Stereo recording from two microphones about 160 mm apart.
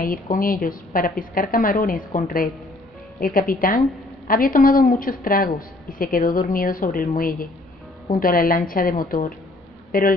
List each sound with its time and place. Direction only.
0.0 s a woman's voice: 60° left (ahead or behind)